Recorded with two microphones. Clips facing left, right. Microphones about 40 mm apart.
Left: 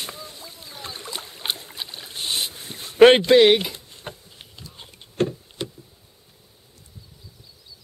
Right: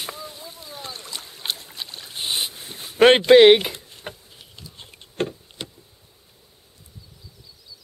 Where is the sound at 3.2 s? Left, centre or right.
Right.